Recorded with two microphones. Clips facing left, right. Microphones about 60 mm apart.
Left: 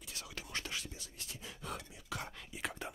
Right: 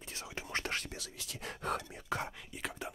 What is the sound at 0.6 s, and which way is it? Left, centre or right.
Speech, right.